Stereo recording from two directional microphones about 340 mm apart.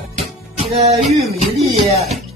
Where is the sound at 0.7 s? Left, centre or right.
Centre.